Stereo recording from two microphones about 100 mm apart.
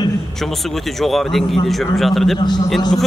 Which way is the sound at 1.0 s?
Centre (ahead or behind).